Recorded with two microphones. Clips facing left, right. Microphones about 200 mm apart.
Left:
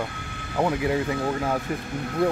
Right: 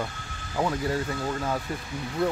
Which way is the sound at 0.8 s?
15° left (ahead or behind).